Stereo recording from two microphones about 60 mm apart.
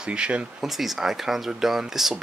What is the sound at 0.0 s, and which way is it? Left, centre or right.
Speech, centre.